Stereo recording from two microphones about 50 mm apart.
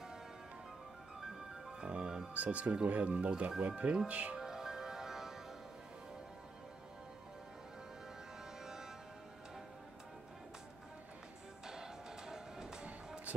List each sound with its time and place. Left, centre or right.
1.2 s music: centre
1.8 s music: centre
2.3 s speech: right
4.4 s music: centre
11.6 s music: centre
12.8 s music: right